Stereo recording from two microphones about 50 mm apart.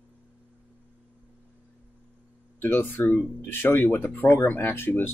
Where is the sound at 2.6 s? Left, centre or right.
Left.